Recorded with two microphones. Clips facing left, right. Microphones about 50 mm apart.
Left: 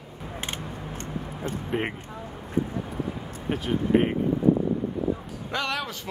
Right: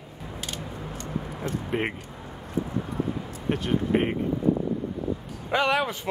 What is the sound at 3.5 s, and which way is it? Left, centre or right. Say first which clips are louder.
Speech: left 1 dB; centre.